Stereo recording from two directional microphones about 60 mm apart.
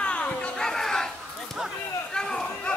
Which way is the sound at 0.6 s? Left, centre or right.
Centre.